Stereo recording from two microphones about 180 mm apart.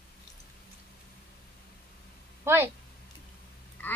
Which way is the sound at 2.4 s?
15° right (ahead or behind).